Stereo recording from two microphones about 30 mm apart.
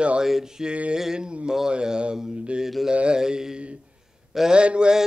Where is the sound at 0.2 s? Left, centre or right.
Centre.